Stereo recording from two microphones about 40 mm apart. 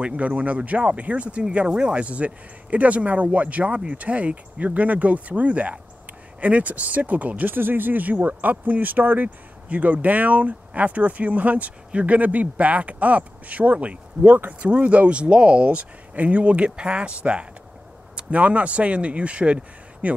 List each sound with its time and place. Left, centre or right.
0.0 s speech: right
1.7 s speech: right
2.0 s speech: right
7.4 s speech: right
9.7 s speech: right